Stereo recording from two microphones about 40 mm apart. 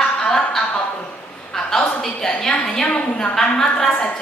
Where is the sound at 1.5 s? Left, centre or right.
Centre.